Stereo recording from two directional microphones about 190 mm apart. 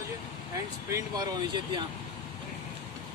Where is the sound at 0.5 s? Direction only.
15° right (ahead or behind).